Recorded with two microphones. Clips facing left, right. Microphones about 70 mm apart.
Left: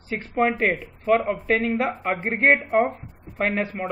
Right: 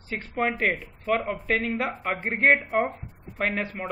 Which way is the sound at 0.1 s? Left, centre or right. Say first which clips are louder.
Left 5 dB; centre.